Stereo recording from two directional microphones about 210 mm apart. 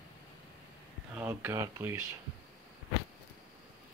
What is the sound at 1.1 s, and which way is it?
Speech, 10° right (ahead or behind).